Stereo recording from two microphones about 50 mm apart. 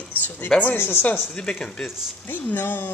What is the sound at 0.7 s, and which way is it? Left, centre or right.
Speech, left.